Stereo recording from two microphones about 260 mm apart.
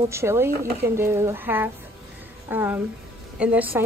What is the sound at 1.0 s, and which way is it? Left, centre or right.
Speech, centre.